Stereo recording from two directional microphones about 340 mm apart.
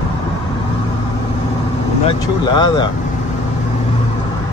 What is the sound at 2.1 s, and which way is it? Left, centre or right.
Speech, centre.